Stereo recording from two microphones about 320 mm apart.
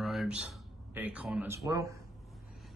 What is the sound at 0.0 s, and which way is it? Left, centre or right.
Speech, centre.